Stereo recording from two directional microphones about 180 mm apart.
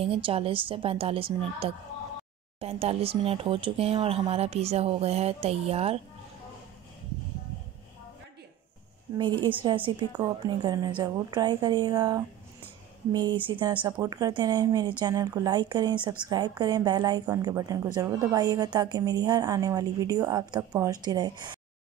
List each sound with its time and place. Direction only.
0.0 s speech: 30° right (ahead or behind)
9.2 s speech: 25° right (ahead or behind)